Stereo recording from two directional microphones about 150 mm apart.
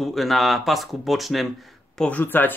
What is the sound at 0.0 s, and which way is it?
Speech, centre (ahead or behind).